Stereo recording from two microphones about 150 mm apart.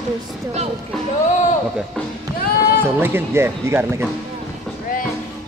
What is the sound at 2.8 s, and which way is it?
Speech, 15° right (ahead or behind).